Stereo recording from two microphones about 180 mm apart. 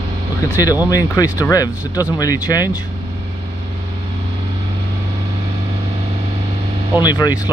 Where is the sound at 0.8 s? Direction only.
20° left (ahead or behind).